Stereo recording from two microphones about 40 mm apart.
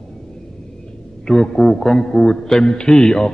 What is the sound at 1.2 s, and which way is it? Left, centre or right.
A man's voice, centre.